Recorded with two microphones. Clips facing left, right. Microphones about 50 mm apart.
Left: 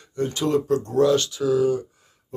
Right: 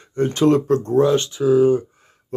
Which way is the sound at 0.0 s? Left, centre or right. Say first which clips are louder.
Right 7 dB; right.